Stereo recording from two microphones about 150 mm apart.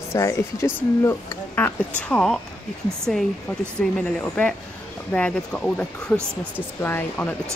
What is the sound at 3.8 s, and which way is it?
Speech, 5° left (ahead or behind).